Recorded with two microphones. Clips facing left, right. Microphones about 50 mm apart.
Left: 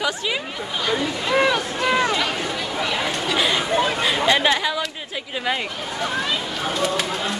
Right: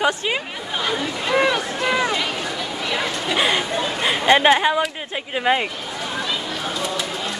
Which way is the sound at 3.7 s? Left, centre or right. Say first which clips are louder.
Left 3 dB; left.